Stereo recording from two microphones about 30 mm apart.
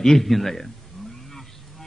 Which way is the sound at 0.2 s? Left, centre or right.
Centre.